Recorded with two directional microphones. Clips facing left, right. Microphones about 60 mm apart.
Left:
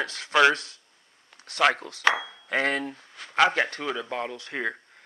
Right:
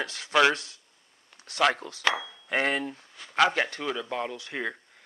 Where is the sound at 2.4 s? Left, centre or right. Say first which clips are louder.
Left 1 dB; left.